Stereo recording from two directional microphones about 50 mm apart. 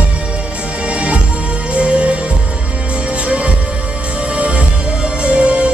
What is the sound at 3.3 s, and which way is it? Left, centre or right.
Music, right.